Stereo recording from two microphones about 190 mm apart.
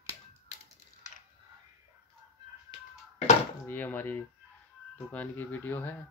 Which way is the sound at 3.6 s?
10° left (ahead or behind).